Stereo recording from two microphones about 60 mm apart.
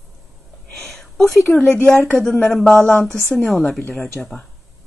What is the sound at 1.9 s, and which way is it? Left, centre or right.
Speech, left.